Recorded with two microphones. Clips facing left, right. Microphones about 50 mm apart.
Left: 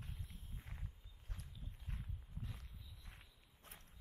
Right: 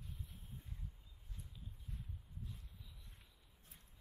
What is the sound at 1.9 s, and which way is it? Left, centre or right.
Walk, left.